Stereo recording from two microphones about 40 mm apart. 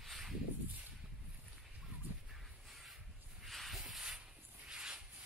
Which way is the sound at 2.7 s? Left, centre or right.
Centre.